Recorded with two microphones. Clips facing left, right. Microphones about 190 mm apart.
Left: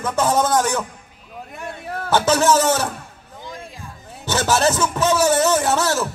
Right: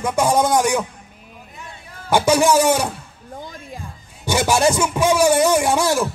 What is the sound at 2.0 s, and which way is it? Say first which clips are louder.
Speech: right 1 dB; 15° right (ahead or behind).